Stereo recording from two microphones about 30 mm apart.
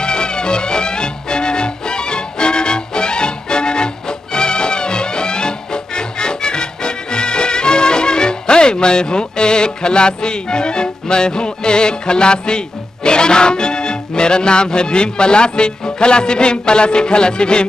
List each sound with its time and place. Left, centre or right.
0.0 s music: left